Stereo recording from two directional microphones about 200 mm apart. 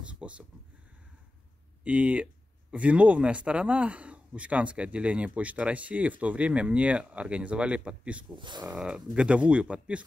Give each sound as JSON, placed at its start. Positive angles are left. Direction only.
{"t": 0.0, "sound": "a sound", "side_deg": -5}
{"t": 1.9, "sound": "speech", "side_deg": -5}
{"t": 8.4, "sound": "speech", "side_deg": -25}
{"t": 8.6, "sound": "speech", "side_deg": -5}